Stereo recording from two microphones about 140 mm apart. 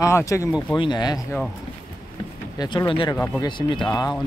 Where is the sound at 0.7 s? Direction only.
30° left (ahead or behind).